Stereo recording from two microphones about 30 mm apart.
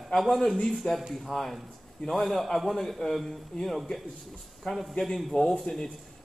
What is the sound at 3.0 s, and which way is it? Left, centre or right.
Speech, left.